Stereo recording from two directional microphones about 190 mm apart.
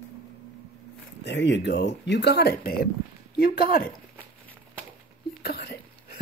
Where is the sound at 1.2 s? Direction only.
65° left (ahead or behind); by 3.8 s 50° left (ahead or behind).